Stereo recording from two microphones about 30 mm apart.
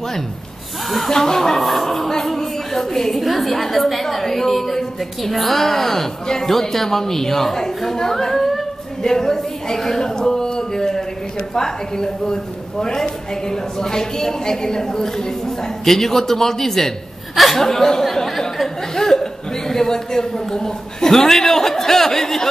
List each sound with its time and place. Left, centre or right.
1.1 s a woman's voice: centre
1.6 s a woman's voice: centre